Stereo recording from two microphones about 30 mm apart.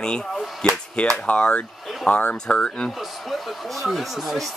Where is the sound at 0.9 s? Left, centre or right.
Left.